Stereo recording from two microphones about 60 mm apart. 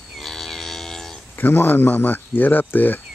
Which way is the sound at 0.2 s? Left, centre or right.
Centre.